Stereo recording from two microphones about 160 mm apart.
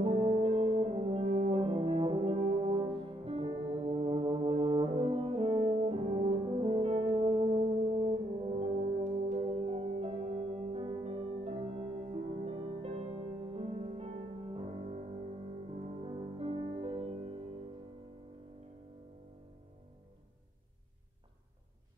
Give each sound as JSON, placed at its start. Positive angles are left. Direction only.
{"t": 0.0, "sound": "french horn", "side_deg": -40}
{"t": 7.9, "sound": "brass instrument", "side_deg": -40}
{"t": 9.6, "sound": "music", "side_deg": -40}